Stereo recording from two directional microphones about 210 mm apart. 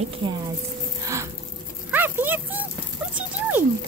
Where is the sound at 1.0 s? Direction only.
15° right (ahead or behind).